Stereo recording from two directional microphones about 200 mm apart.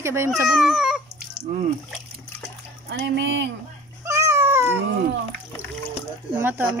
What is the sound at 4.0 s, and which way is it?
Cat, 15° right (ahead or behind).